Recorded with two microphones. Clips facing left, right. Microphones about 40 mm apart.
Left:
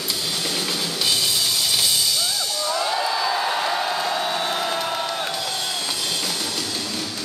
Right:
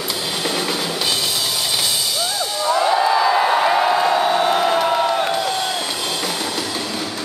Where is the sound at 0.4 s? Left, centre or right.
Right.